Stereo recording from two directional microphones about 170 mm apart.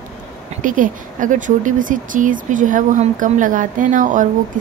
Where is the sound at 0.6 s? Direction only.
50° right (ahead or behind).